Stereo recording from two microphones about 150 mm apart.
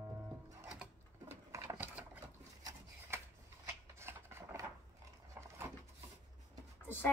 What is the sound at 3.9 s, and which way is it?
Rub, 15° right (ahead or behind).